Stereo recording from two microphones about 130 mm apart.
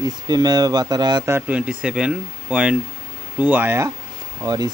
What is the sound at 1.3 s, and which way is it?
Speech, 10° right (ahead or behind).